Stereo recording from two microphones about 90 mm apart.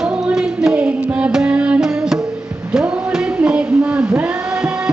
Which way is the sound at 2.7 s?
10° right (ahead or behind).